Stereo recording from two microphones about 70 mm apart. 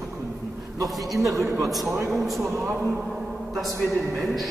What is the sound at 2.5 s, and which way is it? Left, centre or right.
Speech, right.